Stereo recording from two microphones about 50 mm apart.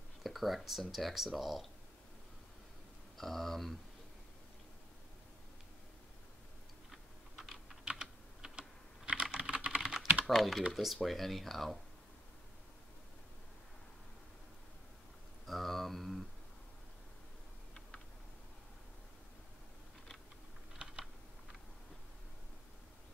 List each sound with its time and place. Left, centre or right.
0.2 s speech: centre
3.2 s speech: centre
6.9 s typing: centre
7.8 s typing: centre
10.2 s speech: centre
15.4 s a sound: centre
20.7 s typing: centre